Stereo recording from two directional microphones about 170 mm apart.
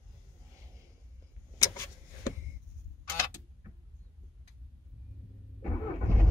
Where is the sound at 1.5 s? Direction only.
20° left (ahead or behind).